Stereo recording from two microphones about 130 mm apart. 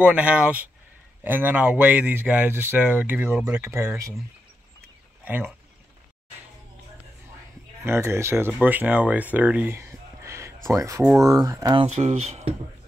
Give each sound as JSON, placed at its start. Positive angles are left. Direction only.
{"t": 0.0, "sound": "speech", "side_deg": -10}
{"t": 5.2, "sound": "speech", "side_deg": -15}
{"t": 7.8, "sound": "speech", "side_deg": -20}
{"t": 11.7, "sound": "speech", "side_deg": -55}